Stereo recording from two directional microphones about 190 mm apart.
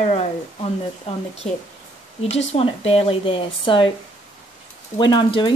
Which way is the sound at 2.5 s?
30° left (ahead or behind).